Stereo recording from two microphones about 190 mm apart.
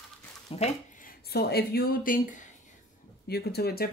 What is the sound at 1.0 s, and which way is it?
Speech, 55° left (ahead or behind).